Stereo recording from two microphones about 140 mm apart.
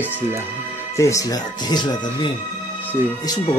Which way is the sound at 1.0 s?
25° left (ahead or behind).